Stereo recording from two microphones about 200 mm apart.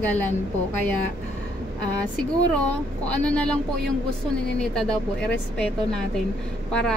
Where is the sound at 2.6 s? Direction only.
5° left (ahead or behind).